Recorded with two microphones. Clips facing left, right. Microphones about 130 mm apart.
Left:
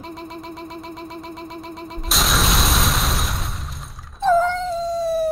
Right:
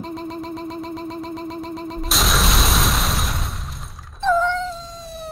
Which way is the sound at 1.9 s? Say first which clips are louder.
Even; centre (ahead or behind).